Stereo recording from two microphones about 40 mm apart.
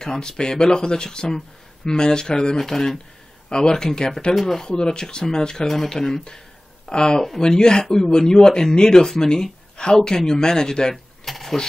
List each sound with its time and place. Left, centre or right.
0.0 s speech: centre
2.5 s speech: centre
3.4 s speech: centre
4.4 s speech: centre
4.6 s speech: centre
11.2 s a sound: centre